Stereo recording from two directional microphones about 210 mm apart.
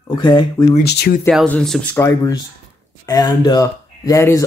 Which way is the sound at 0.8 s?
50° left (ahead or behind).